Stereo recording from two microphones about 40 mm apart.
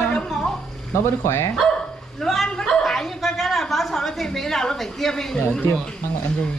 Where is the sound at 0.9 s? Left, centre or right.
Left.